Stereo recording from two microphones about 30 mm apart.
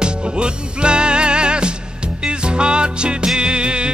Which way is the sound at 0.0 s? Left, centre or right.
Right.